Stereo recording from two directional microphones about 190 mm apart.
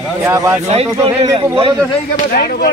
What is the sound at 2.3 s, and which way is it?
Speech, 50° left (ahead or behind).